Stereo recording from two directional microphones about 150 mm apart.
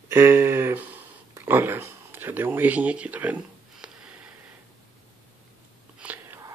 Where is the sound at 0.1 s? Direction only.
15° right (ahead or behind).